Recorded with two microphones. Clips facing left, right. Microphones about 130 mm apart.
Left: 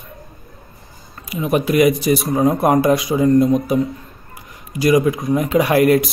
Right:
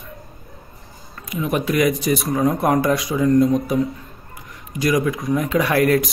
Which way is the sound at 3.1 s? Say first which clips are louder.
Left 1 dB; 30° left (ahead or behind).